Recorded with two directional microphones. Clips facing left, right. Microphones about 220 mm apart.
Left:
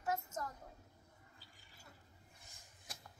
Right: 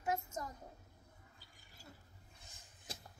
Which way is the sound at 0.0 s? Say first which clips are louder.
Right 1 dB; 10° right (ahead or behind).